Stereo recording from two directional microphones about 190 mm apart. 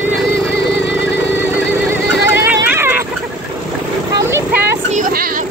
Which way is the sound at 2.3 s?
10° right (ahead or behind).